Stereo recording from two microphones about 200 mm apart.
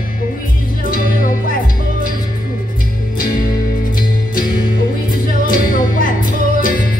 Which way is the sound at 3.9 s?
45° left (ahead or behind).